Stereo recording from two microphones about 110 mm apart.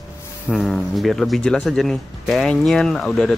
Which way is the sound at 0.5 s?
Centre (ahead or behind).